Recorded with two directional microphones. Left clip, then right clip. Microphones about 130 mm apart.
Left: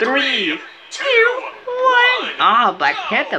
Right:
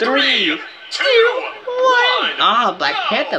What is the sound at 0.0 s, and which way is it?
A woman's voice, 15° right (ahead or behind).